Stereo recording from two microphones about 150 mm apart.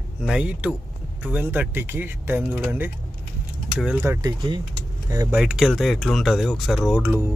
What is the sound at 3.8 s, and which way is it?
Speech, 5° right (ahead or behind).